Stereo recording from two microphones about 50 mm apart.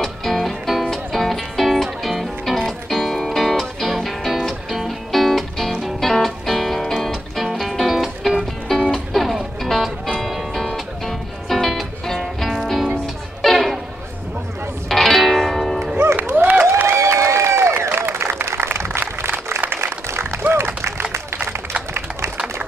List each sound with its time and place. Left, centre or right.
0.0 s music: centre
14.9 s music: centre
16.3 s a sound: right
16.8 s applause: right
17.8 s applause: right